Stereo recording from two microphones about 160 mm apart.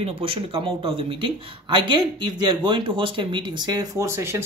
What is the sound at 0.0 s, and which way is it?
Speech, 35° right (ahead or behind).